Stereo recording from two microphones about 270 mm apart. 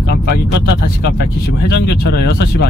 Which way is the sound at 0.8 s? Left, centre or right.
Left.